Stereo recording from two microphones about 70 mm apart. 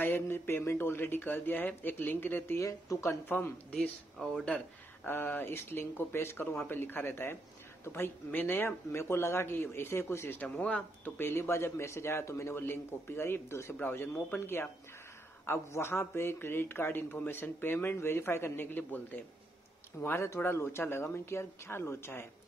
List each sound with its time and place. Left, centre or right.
0.0 s speech: left
2.6 s speech: left
3.3 s speech: left
5.0 s speech: left
6.4 s speech: centre
6.7 s speech: left
10.4 s speech: left
11.1 s speech: left
20.0 s speech: left